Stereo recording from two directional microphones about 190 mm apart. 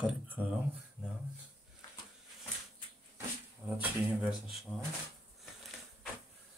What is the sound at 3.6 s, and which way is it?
Speech, 5° right (ahead or behind).